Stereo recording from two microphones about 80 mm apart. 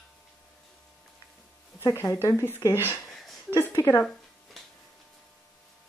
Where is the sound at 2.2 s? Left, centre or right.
Left.